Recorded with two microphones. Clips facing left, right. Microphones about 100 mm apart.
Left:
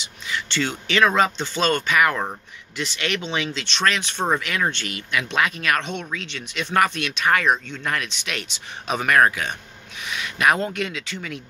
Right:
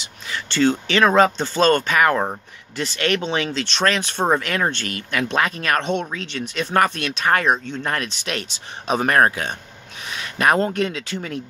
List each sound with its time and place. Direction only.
0.0 s speech: 35° right (ahead or behind)